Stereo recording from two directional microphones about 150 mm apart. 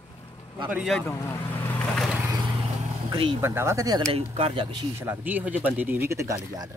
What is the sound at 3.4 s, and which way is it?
Speech, 15° right (ahead or behind).